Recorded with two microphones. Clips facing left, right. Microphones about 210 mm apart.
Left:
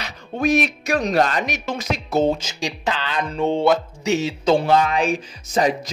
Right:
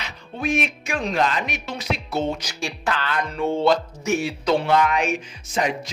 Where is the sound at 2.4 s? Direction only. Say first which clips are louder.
Left 2 dB; 20° left (ahead or behind).